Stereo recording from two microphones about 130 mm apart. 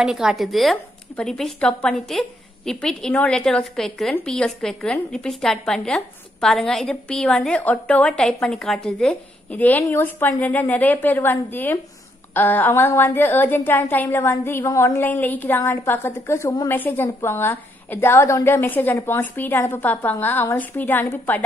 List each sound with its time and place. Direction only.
0.0 s a woman's voice: 5° right (ahead or behind); by 21.4 s 15° left (ahead or behind)